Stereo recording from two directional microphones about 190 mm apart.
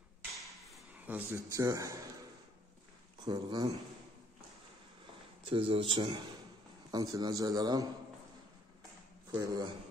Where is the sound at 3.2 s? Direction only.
20° right (ahead or behind).